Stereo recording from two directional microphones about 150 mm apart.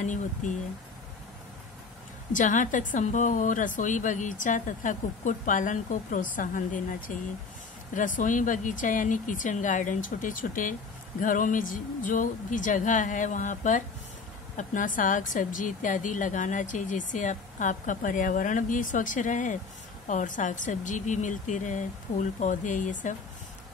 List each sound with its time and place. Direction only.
0.0 s speech: 55° left (ahead or behind)
2.3 s speech: 60° left (ahead or behind)